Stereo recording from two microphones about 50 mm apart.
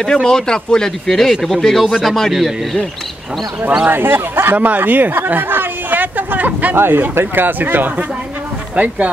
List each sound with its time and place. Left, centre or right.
0.0 s speech: centre
3.8 s speech: right
4.6 s speech: right
6.7 s speech: right
8.7 s speech: right